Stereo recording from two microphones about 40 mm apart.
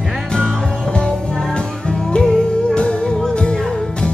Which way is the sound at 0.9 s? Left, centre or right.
Left.